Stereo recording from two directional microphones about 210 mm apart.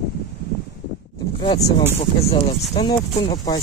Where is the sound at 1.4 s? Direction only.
20° left (ahead or behind).